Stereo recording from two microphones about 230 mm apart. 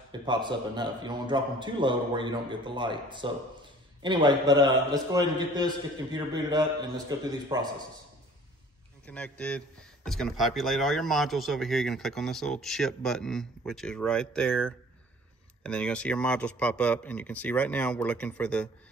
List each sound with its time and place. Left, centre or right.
0.1 s a man's voice: centre
9.0 s speech: centre